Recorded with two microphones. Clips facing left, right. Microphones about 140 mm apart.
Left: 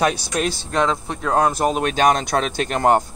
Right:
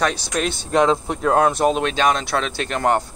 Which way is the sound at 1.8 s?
45° left (ahead or behind).